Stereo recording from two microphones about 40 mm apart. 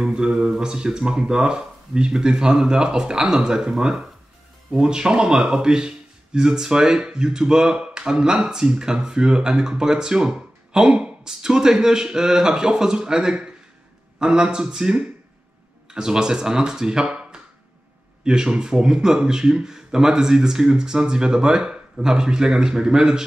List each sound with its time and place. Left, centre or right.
0.0 s a man's voice: right